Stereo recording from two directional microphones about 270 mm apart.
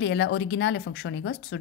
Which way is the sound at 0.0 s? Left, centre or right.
Left.